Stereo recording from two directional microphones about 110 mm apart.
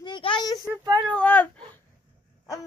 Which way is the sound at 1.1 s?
15° left (ahead or behind).